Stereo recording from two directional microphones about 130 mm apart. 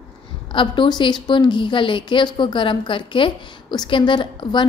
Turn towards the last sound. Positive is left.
turn(degrees=35)  # may be behind; listen again after turning